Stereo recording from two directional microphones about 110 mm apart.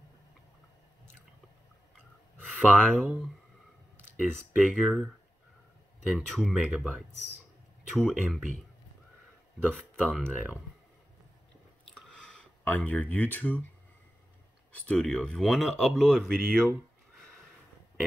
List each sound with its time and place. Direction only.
2.5 s speech: 10° left (ahead or behind)
4.2 s speech: centre (ahead or behind)
6.0 s speech: centre (ahead or behind)
7.9 s speech: 5° left (ahead or behind)
9.7 s speech: 5° left (ahead or behind)
11.9 s chewing: 5° left (ahead or behind)
12.6 s speech: 15° left (ahead or behind)
14.9 s speech: 5° left (ahead or behind)